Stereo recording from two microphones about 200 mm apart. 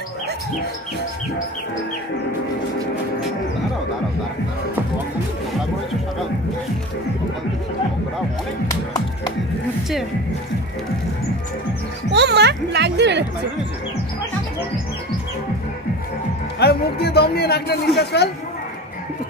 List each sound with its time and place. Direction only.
8.6 s speech: 20° left (ahead or behind)
12.1 s a child's voice: 60° right (ahead or behind)
16.5 s speech: 55° left (ahead or behind)